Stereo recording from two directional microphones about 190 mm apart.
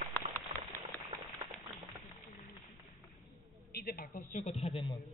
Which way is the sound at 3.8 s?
50° left (ahead or behind).